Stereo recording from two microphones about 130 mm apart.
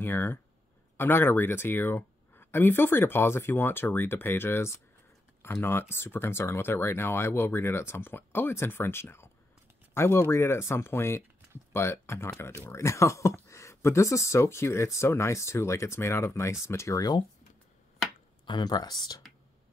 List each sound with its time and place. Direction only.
0.0 s speech: 15° left (ahead or behind)
18.4 s speech: 35° left (ahead or behind)